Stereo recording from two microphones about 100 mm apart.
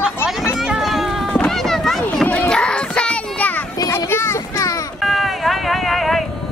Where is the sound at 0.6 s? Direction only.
5° right (ahead or behind).